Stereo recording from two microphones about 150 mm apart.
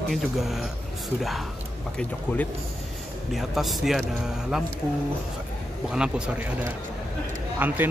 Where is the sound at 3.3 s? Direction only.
Centre (ahead or behind).